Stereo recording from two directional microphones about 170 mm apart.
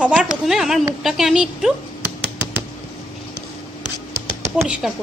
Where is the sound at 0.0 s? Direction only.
5° right (ahead or behind).